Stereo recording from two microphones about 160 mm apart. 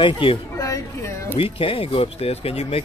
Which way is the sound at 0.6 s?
20° left (ahead or behind).